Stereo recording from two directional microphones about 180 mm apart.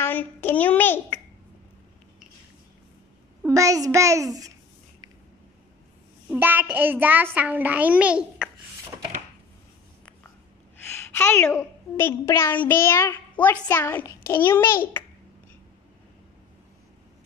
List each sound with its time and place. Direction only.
0.0 s a child's voice: 10° left (ahead or behind)
3.4 s a child's voice: 20° right (ahead or behind)
6.3 s a child's voice: 10° right (ahead or behind)
10.8 s a child's voice: 10° left (ahead or behind)